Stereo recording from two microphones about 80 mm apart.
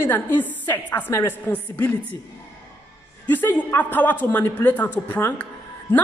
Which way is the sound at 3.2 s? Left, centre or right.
Left.